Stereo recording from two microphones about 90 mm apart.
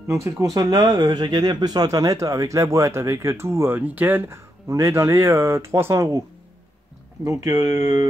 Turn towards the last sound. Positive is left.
turn(degrees=-35)  # may be behind; listen again after turning